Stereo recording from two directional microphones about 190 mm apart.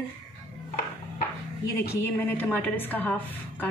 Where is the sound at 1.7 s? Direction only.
10° left (ahead or behind).